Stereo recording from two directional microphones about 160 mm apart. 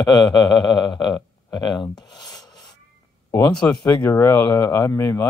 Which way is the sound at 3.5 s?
5° left (ahead or behind).